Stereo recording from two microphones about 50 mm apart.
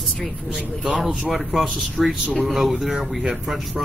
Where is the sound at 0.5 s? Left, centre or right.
Centre.